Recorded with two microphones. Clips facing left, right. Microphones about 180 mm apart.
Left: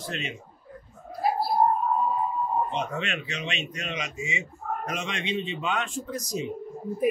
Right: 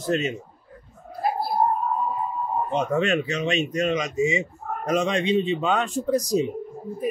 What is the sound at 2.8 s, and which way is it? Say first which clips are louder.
Speech: right 9 dB; 40° right (ahead or behind).